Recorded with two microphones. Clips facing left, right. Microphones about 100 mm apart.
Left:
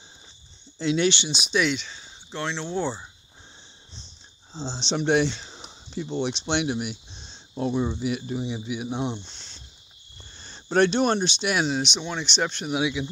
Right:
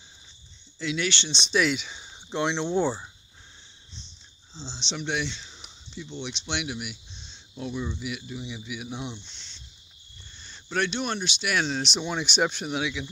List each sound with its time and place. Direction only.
0.7 s speech: 30° left (ahead or behind)
1.1 s speech: 10° left (ahead or behind); by 3.1 s 10° right (ahead or behind)
4.6 s speech: 40° left (ahead or behind)
11.5 s speech: 10° left (ahead or behind)
11.8 s speech: 5° right (ahead or behind)
12.6 s speech: 15° left (ahead or behind)